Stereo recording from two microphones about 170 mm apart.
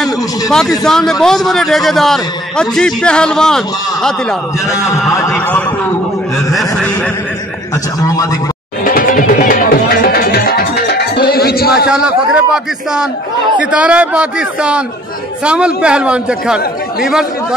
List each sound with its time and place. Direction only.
0.0 s a man's voice: 5° left (ahead or behind)
4.6 s a man's voice: 20° left (ahead or behind)
6.5 s chuckle: centre (ahead or behind)
8.8 s music: 55° left (ahead or behind)
13.6 s a man's voice: 5° right (ahead or behind)